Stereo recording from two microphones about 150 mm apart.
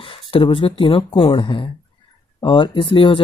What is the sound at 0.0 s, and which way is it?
Speech, 35° left (ahead or behind).